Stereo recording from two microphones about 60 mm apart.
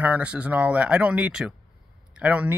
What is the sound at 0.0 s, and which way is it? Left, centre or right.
Speech, right.